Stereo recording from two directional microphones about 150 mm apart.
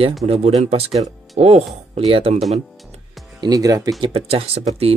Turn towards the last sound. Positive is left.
turn(degrees=-40)  # may be behind; listen again after turning